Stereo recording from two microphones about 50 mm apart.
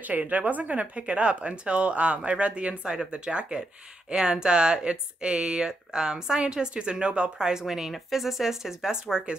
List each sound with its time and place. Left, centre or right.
0.0 s speech: right; by 9.4 s centre